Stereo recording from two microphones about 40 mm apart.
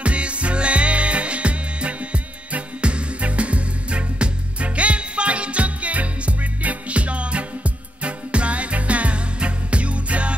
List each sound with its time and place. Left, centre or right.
0.0 s music: right